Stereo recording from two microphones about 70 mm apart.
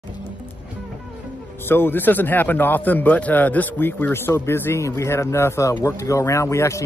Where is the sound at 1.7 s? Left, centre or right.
Left.